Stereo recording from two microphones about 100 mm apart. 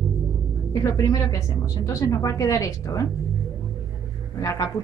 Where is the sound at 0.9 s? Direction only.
30° left (ahead or behind).